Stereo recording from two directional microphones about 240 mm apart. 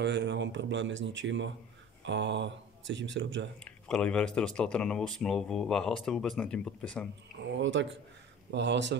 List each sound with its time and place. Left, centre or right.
0.0 s speech: right
3.5 s speech: centre
7.5 s speech: right